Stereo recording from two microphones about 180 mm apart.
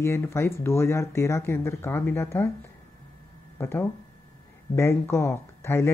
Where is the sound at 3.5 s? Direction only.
10° left (ahead or behind).